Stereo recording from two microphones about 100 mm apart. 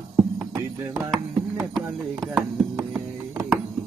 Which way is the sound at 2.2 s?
5° right (ahead or behind).